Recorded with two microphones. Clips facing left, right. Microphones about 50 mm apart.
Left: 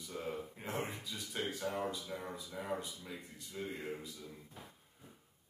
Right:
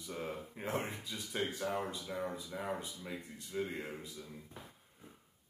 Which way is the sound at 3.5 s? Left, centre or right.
Right.